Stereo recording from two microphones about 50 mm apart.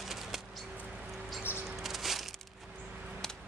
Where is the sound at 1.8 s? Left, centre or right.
Centre.